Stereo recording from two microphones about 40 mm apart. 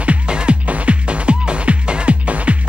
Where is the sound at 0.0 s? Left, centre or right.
Right.